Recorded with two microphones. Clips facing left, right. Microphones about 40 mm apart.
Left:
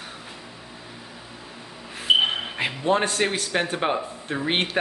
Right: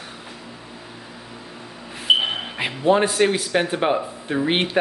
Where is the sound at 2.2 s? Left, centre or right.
Centre.